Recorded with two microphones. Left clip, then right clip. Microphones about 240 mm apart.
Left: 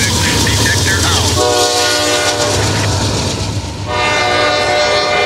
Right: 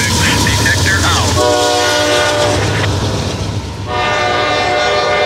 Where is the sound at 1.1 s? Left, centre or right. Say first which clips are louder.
Right 1 dB; left.